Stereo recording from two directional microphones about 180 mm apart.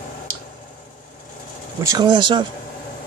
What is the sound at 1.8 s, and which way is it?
Speech, 20° right (ahead or behind).